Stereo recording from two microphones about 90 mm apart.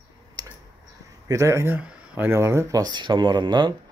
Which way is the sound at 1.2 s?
35° right (ahead or behind).